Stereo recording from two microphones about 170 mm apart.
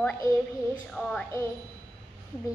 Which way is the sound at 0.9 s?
5° left (ahead or behind).